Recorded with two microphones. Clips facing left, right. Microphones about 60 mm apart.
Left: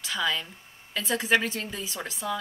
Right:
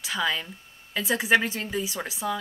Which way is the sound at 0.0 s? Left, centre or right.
Centre.